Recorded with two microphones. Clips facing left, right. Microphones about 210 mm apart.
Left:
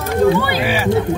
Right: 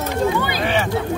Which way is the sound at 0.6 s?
5° left (ahead or behind).